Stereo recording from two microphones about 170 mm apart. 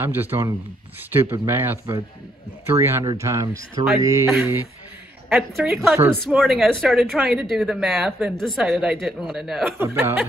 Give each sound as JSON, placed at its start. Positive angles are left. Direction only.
{"t": 0.0, "sound": "speech", "side_deg": -10}
{"t": 5.3, "sound": "speech", "side_deg": 0}
{"t": 9.8, "sound": "speech", "side_deg": -10}